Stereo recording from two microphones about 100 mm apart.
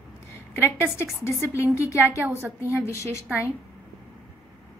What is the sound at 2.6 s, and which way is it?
Speech, 30° left (ahead or behind).